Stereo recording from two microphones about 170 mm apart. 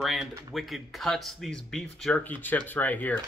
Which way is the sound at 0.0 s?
Centre (ahead or behind).